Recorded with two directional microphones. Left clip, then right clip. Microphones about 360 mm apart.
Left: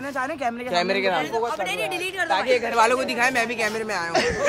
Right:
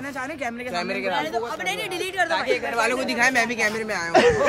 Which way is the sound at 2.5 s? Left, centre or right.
Left.